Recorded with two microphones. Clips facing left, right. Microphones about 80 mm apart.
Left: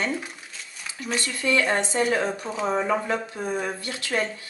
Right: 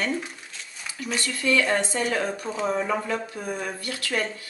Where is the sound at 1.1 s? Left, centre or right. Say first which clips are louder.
Even; left.